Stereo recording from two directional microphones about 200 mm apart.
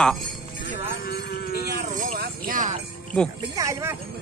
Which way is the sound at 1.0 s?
50° left (ahead or behind).